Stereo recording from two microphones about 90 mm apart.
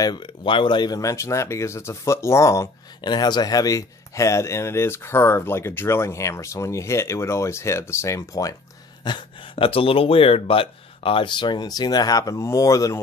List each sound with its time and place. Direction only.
0.0 s speech: 55° left (ahead or behind); by 2.7 s 35° left (ahead or behind)
3.0 s speech: 50° left (ahead or behind)
9.0 s speech: 65° left (ahead or behind); by 13.0 s 35° left (ahead or behind)